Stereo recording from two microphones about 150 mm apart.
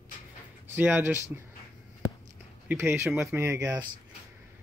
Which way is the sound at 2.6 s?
15° right (ahead or behind).